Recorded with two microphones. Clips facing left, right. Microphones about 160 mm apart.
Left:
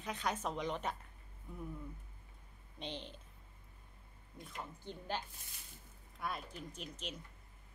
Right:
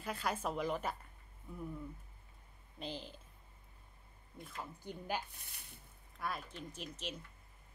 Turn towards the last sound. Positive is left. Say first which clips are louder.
# right 1 dB
turn(degrees=0)  # may be behind; listen again after turning